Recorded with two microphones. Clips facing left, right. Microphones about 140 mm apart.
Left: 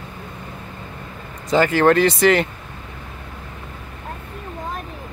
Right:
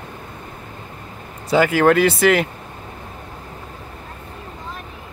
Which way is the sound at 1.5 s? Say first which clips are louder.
Even; 10° right (ahead or behind).